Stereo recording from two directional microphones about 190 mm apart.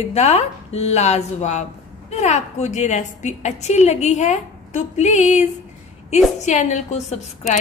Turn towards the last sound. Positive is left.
turn(degrees=35)  # may be behind; listen again after turning